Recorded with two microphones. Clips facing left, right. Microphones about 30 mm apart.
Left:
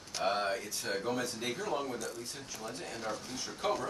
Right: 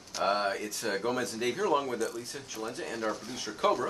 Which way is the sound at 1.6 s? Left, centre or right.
Right.